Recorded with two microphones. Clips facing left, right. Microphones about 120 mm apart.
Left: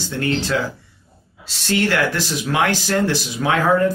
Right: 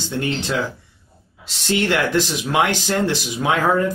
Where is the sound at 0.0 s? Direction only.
20° right (ahead or behind).